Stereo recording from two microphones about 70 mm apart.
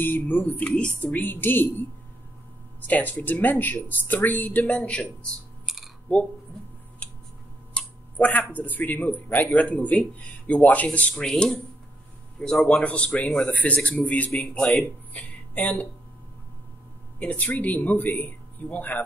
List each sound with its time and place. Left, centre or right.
0.0 s speech: left
1.2 s speech: left
2.9 s speech: left
5.7 s a sound: centre
7.7 s speech: centre
17.2 s speech: centre